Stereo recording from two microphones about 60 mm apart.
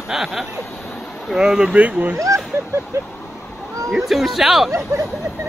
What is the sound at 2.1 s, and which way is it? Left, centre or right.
Speech, right.